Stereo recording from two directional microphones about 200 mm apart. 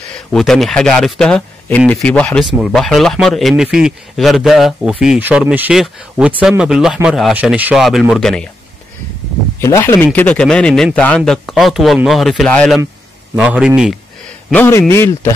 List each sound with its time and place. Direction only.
0.1 s speech: centre (ahead or behind)
9.6 s speech: 15° left (ahead or behind)
13.4 s speech: 5° right (ahead or behind)
14.5 s speech: 10° left (ahead or behind)